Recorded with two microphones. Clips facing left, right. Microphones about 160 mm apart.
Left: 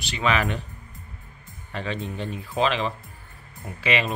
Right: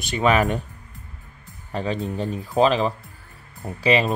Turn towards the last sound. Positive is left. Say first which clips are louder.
# right 6 dB
turn(degrees=-40)  # may be behind; listen again after turning